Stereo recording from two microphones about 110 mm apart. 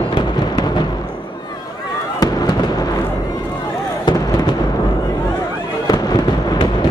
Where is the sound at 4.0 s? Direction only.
40° left (ahead or behind).